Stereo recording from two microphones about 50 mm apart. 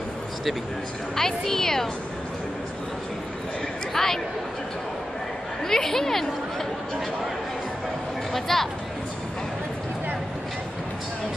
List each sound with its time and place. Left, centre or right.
1.1 s a woman's voice: centre
3.9 s speech: centre
5.7 s a woman's voice: centre
8.3 s speech: centre